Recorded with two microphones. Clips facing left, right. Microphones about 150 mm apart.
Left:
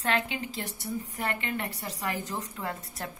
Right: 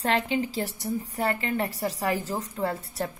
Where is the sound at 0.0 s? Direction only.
35° right (ahead or behind).